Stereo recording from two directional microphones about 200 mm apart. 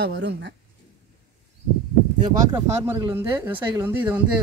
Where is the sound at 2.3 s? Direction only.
15° right (ahead or behind).